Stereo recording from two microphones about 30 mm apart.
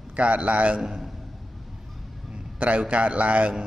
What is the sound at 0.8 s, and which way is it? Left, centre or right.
Speech, centre.